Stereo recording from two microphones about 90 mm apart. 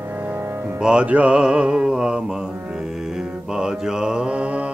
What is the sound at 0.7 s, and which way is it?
Music, 10° right (ahead or behind).